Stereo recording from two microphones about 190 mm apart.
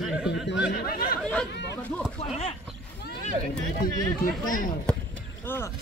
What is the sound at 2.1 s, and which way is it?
Speech, 35° left (ahead or behind).